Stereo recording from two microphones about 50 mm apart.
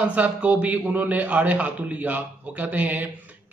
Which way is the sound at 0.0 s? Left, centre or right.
Right.